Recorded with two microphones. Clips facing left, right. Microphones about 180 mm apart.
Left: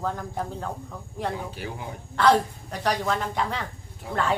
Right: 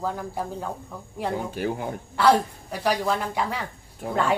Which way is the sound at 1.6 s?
55° right (ahead or behind).